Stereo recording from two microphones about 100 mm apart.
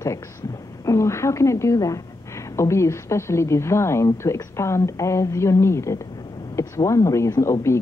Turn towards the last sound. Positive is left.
turn(degrees=30)  # may be behind; listen again after turning